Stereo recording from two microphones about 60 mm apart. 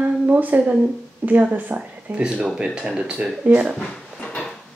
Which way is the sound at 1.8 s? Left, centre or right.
Centre.